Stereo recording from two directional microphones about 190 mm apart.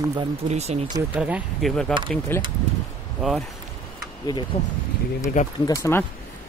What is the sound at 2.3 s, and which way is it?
Speech, 10° left (ahead or behind).